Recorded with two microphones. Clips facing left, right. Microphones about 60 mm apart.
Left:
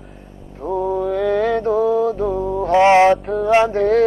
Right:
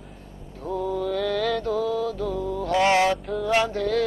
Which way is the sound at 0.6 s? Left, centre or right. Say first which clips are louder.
Left 7 dB; left.